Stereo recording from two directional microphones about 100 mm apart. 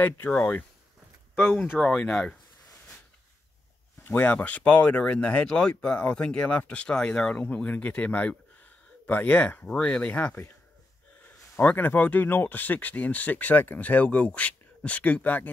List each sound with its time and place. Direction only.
0.0 s speech: 20° left (ahead or behind)
1.8 s speech: 10° left (ahead or behind)
4.0 s speech: 15° left (ahead or behind)
11.5 s speech: 20° left (ahead or behind)